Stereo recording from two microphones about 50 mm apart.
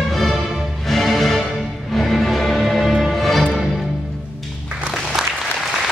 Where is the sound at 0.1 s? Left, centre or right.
Centre.